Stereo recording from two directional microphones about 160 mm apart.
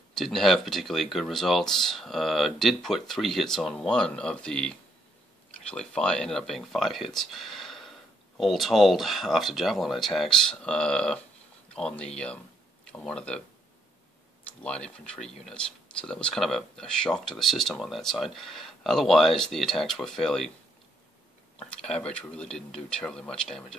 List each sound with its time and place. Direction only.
0.1 s speech: centre (ahead or behind)
14.6 s speech: 5° left (ahead or behind)
21.5 s speech: 5° left (ahead or behind)